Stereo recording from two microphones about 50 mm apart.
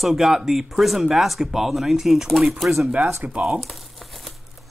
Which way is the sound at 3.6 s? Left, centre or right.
Centre.